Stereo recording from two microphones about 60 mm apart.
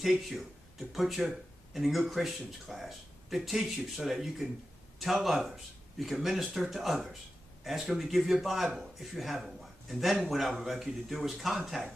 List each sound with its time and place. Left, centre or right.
0.0 s speech: centre